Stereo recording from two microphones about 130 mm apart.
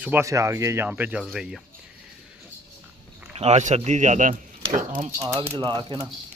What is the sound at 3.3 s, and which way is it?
A man's voice, 60° right (ahead or behind).